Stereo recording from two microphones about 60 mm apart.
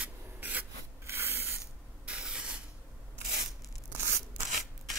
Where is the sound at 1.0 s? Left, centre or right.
Right.